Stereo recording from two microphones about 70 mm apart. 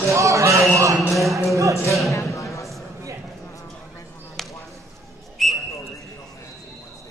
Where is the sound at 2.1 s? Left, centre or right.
Left.